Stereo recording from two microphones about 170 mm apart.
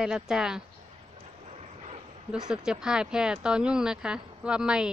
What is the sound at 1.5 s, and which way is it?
Vehicle, 40° right (ahead or behind).